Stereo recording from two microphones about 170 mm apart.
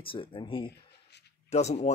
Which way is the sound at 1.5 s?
40° left (ahead or behind).